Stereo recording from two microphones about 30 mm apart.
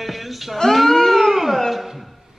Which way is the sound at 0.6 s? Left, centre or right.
Centre.